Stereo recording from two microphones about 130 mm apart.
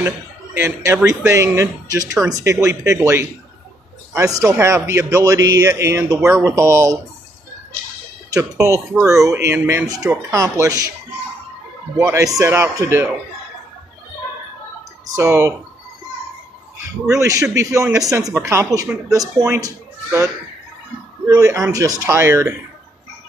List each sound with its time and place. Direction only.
0.6 s a man's voice: 20° right (ahead or behind)
8.3 s a man's voice: 25° right (ahead or behind)
12.1 s a man's voice: 25° right (ahead or behind)
15.1 s a man's voice: 20° right (ahead or behind)
17.2 s a man's voice: 25° right (ahead or behind)
21.3 s a man's voice: 25° right (ahead or behind)